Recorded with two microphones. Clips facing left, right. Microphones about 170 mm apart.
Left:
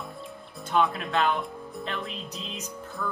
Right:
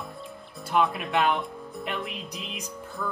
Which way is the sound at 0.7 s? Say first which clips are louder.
Even; centre (ahead or behind).